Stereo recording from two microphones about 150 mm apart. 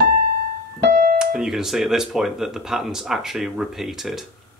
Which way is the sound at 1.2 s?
5° right (ahead or behind).